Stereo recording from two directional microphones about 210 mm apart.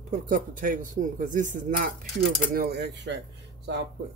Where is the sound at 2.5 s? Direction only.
50° right (ahead or behind).